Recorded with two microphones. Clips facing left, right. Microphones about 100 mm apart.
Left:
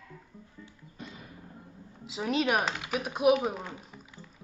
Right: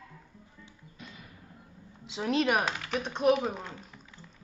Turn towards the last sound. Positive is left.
turn(degrees=10)  # may be behind; listen again after turning